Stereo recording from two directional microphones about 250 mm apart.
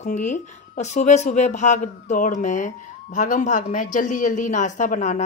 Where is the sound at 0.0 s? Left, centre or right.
Left.